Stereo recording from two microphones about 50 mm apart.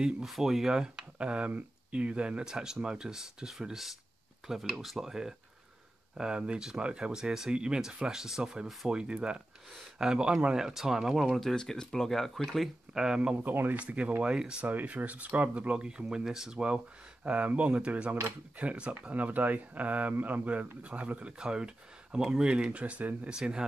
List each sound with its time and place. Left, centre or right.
0.0 s speech: centre
1.1 s speech: right
11.3 s speech: centre
12.9 s speech: centre
13.4 s speech: right
13.8 s speech: right
14.7 s speech: right
23.2 s speech: centre